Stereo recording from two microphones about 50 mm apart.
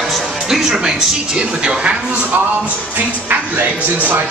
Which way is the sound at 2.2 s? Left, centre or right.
Right.